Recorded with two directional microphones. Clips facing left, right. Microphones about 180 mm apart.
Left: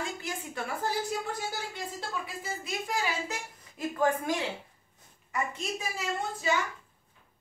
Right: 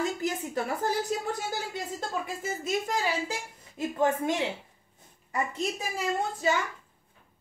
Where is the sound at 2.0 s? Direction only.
45° right (ahead or behind).